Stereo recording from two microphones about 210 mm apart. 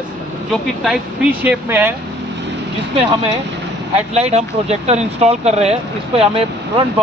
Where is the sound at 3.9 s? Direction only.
30° right (ahead or behind).